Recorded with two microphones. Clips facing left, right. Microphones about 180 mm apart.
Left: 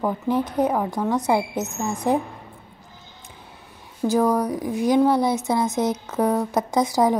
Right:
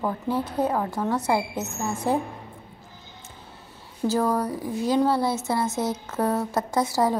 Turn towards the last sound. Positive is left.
turn(degrees=15)  # may be behind; listen again after turning